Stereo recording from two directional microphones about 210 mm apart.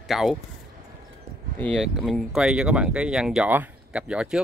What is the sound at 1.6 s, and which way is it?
Speech, centre (ahead or behind).